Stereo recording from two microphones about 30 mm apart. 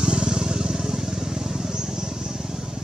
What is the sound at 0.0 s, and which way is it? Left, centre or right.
Vehicle, right.